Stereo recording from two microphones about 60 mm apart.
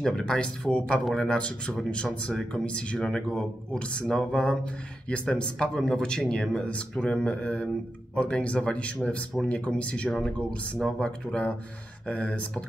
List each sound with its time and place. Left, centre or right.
0.0 s speech: centre
2.5 s speech: centre